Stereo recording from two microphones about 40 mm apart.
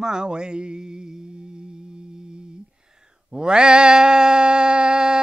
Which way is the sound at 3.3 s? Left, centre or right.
Centre.